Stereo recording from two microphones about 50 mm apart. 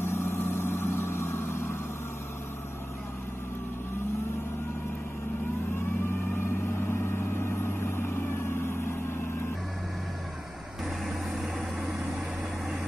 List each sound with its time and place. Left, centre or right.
0.0 s vehicle: left
6.9 s vehicle: left